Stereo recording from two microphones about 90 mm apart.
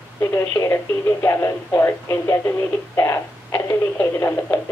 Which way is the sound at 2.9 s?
25° left (ahead or behind).